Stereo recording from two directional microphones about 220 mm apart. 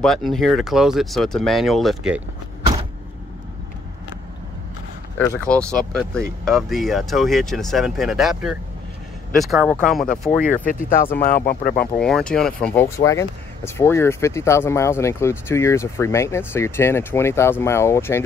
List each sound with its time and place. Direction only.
0.0 s speech: centre (ahead or behind)
5.2 s speech: 10° left (ahead or behind)
10.6 s speech: 40° left (ahead or behind)
11.8 s speech: 5° left (ahead or behind)